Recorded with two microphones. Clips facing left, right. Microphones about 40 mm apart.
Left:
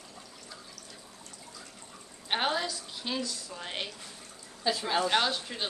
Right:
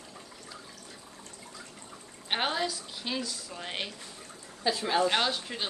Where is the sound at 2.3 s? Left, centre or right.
Centre.